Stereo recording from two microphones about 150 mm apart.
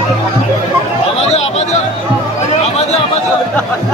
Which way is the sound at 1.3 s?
45° left (ahead or behind).